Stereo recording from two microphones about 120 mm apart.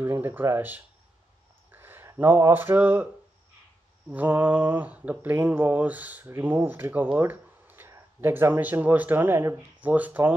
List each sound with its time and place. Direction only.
0.0 s speech: 15° right (ahead or behind)
4.1 s speech: 15° right (ahead or behind)